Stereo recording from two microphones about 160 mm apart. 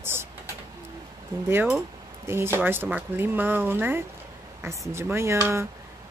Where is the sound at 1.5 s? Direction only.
10° right (ahead or behind).